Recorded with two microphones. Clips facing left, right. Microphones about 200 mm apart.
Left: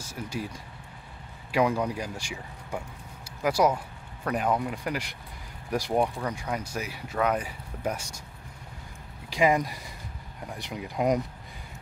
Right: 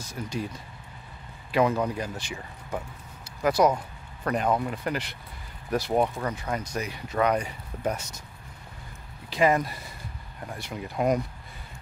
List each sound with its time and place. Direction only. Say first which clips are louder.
0.0 s speech: right 2 dB; 10° left (ahead or behind)
9.3 s speech: right 1 dB; 15° left (ahead or behind)